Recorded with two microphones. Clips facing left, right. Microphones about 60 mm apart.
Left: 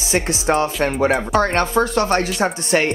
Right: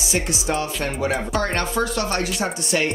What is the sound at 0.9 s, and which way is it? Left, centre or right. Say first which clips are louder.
Speech: left 6 dB; left.